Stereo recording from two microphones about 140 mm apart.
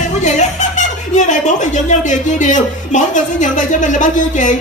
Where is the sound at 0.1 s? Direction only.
60° left (ahead or behind).